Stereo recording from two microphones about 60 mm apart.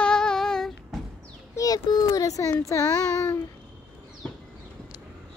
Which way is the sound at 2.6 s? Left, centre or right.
Left.